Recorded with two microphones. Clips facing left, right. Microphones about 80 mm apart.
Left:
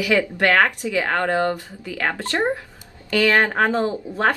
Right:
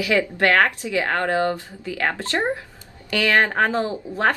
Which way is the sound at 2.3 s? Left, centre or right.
Centre.